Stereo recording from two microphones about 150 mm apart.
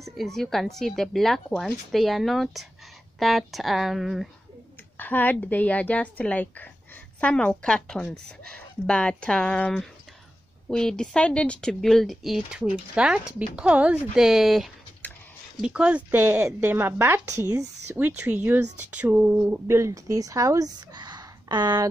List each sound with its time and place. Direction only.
0.0 s speech: centre (ahead or behind)
4.9 s a woman's voice: 10° left (ahead or behind); by 21.8 s 30° right (ahead or behind)